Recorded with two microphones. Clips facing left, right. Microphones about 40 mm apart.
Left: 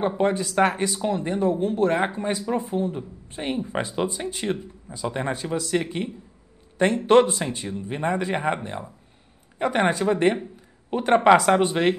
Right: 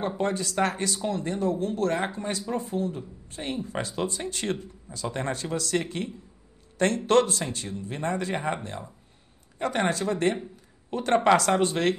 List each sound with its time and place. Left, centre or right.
0.2 s speech: centre